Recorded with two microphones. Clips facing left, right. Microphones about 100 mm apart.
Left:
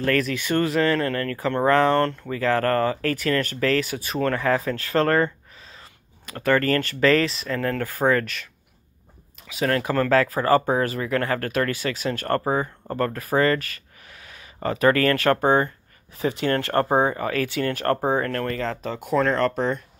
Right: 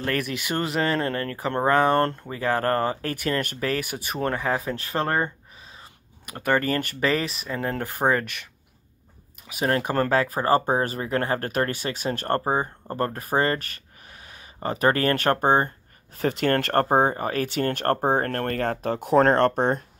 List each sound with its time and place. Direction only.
0.0 s speech: 20° right (ahead or behind)
9.6 s speech: 25° right (ahead or behind)
16.1 s speech: 55° right (ahead or behind)